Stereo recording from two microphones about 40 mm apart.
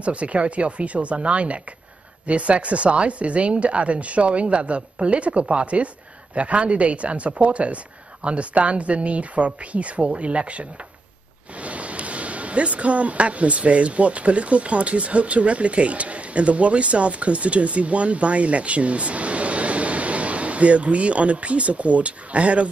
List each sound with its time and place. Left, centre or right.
0.0 s speech: right